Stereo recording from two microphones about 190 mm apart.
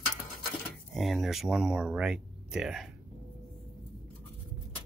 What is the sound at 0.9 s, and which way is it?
Speech, centre (ahead or behind).